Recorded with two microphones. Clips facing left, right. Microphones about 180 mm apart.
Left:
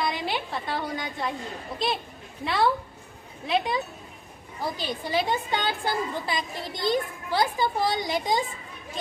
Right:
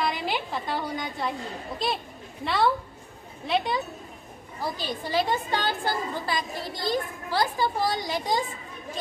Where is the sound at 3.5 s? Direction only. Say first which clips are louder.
Even; centre (ahead or behind).